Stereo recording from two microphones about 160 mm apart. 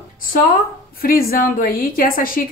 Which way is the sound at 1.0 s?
65° left (ahead or behind).